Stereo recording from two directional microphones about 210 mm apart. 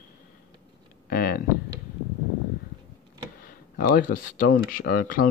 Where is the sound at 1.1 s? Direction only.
45° left (ahead or behind).